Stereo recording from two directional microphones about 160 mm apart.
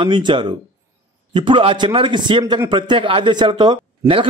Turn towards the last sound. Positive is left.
turn(degrees=-35)  # may be behind; listen again after turning